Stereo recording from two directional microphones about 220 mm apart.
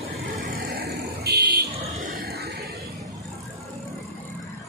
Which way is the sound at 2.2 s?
45° right (ahead or behind).